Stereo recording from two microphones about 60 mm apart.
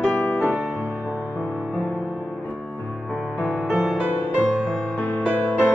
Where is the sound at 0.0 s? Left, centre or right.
Centre.